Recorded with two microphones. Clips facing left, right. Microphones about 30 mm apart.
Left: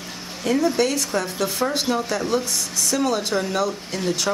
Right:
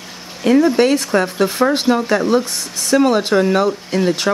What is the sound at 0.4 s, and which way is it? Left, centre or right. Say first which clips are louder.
Speech: right 7 dB; right.